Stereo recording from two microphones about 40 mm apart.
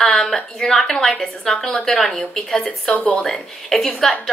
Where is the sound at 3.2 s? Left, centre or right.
Centre.